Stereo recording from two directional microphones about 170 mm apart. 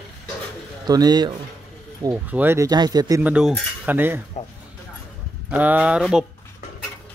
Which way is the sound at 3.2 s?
5° right (ahead or behind).